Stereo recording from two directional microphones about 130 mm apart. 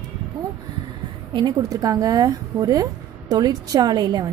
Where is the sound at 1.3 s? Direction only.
30° right (ahead or behind).